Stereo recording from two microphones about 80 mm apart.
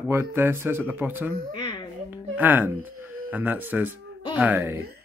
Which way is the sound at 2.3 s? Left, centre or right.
Right.